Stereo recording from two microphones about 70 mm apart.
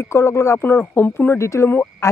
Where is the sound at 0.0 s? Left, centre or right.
Left.